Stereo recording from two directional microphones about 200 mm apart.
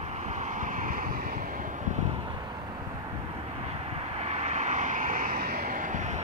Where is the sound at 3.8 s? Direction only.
30° right (ahead or behind).